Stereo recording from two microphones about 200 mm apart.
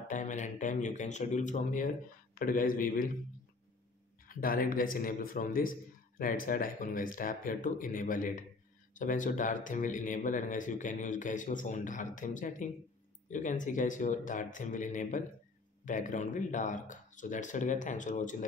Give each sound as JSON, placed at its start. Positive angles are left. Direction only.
{"t": 0.1, "sound": "a man's voice", "side_deg": 40}
{"t": 4.3, "sound": "a man's voice", "side_deg": 45}